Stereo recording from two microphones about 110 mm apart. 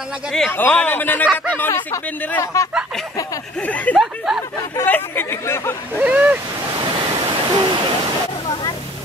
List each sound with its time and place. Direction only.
0.5 s a man's voice: 20° left (ahead or behind)
3.6 s a man's voice: 15° left (ahead or behind)
3.9 s speech: 5° right (ahead or behind)
4.8 s speech: 20° left (ahead or behind)
5.9 s speech: 15° right (ahead or behind)
7.0 s waterfall: 45° right (ahead or behind)